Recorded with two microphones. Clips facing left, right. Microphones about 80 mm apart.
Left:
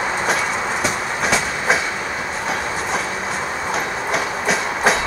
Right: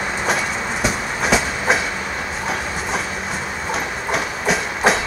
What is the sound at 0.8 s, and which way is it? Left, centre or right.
Train, centre.